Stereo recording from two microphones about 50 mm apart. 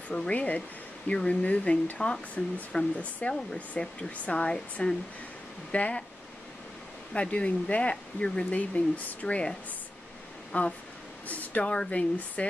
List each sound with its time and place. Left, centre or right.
0.3 s speech: left
7.2 s speech: left
11.2 s a sound: left
11.7 s speech: left